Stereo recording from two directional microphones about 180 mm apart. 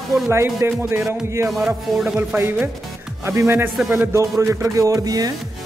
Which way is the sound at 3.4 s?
10° right (ahead or behind).